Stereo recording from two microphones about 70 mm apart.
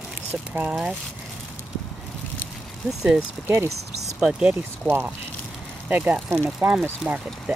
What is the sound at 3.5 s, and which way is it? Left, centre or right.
Speech, right.